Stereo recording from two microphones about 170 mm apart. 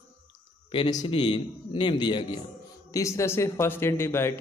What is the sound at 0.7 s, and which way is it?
A man's voice, 25° left (ahead or behind).